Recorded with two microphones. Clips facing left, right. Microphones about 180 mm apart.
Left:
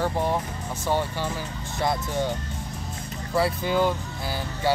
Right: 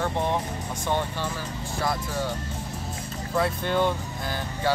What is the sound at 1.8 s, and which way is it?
Speech, 25° left (ahead or behind).